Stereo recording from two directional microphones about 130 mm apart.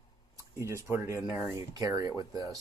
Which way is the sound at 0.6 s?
20° right (ahead or behind).